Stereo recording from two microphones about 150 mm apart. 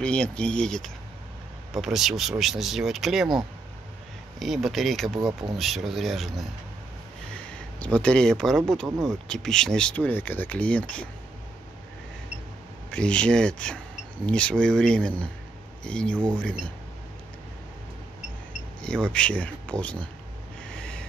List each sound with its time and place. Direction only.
0.0 s speech: 5° left (ahead or behind)
4.4 s speech: centre (ahead or behind)
5.2 s speech: 30° right (ahead or behind)
5.6 s speech: centre (ahead or behind)
7.8 s speech: 5° left (ahead or behind)
12.9 s speech: 5° left (ahead or behind)
18.8 s speech: 5° left (ahead or behind)